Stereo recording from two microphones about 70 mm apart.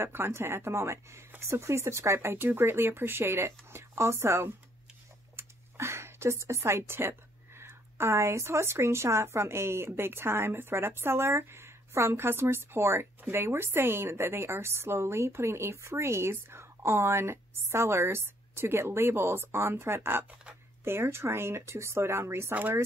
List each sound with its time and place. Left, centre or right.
0.0 s a woman's voice: right
22.5 s speech: right